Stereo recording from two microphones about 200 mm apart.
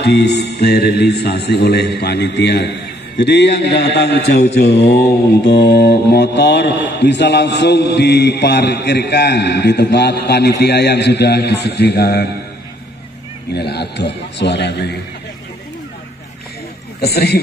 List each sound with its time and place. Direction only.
0.0 s mantra: 55° left (ahead or behind)
13.5 s mantra: 55° left (ahead or behind)
17.0 s a man's voice: 55° left (ahead or behind)